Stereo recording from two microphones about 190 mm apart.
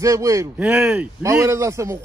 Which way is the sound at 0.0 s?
15° right (ahead or behind).